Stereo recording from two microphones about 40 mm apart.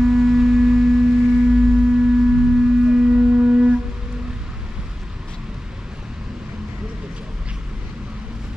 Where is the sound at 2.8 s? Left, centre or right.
Centre.